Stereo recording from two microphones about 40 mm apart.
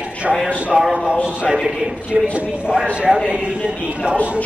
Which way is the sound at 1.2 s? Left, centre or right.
Right.